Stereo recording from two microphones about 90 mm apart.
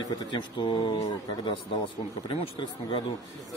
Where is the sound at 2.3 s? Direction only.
70° left (ahead or behind).